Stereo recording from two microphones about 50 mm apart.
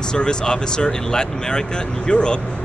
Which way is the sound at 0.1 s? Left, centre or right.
Centre.